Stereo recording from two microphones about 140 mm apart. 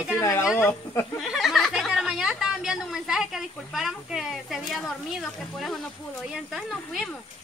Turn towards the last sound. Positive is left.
turn(degrees=0)  # may be behind; listen again after turning